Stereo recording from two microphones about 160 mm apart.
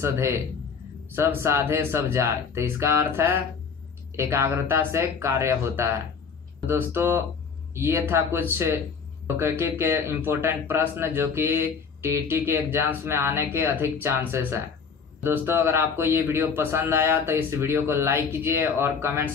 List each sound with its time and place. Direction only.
0.0 s speech: 15° right (ahead or behind)